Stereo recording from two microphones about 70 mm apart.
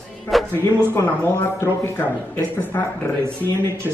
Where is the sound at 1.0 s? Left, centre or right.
Left.